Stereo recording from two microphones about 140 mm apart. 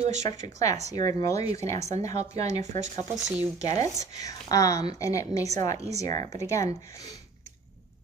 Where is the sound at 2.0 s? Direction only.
55° right (ahead or behind).